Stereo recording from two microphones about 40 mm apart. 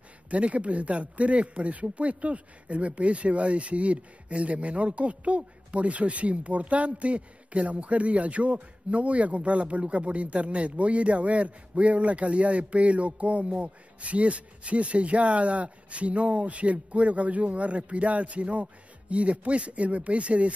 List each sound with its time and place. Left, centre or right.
0.3 s speech: right